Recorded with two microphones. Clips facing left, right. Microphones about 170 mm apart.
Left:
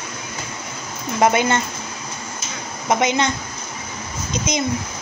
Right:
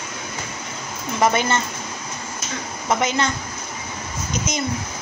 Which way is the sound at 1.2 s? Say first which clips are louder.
Left 2 dB; 15° left (ahead or behind).